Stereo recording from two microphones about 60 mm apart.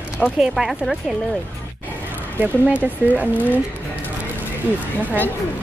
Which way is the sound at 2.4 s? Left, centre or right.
Right.